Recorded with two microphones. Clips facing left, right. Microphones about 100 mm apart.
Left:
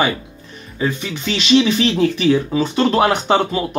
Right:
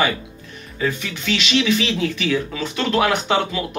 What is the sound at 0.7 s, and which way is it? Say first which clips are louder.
Speech: left 2 dB; 25° left (ahead or behind).